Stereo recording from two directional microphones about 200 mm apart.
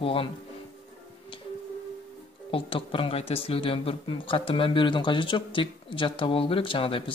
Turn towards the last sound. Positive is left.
turn(degrees=25)  # may be behind; listen again after turning